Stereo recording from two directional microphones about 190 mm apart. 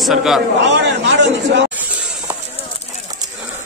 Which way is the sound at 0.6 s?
70° right (ahead or behind).